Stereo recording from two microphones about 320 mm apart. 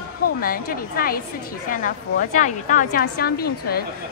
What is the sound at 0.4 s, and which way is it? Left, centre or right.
A woman's voice, left.